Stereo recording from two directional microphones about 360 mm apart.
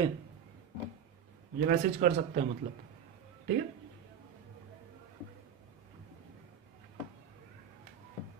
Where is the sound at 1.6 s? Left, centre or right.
Right.